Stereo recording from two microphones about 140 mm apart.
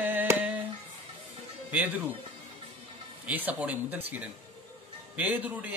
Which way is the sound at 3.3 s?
10° right (ahead or behind).